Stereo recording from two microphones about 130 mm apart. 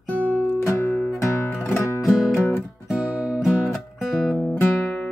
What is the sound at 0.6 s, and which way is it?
Music, 20° left (ahead or behind).